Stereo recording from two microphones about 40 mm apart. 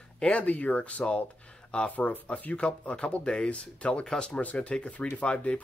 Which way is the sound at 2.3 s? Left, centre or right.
Left.